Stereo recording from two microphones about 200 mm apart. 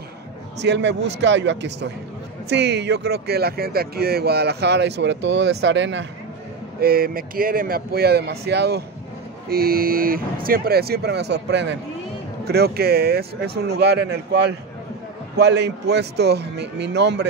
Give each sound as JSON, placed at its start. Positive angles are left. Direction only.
{"t": 0.6, "sound": "speech", "side_deg": -60}
{"t": 6.8, "sound": "speech", "side_deg": -50}